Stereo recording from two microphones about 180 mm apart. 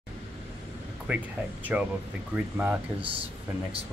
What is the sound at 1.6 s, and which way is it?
Speech, 10° right (ahead or behind).